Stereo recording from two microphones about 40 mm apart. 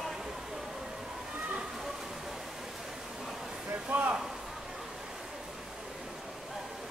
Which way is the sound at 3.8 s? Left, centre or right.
Right.